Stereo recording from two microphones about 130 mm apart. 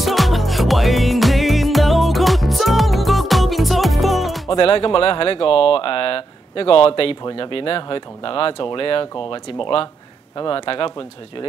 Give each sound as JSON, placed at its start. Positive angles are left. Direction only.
{"t": 0.0, "sound": "music", "side_deg": 0}
{"t": 4.6, "sound": "speech", "side_deg": 40}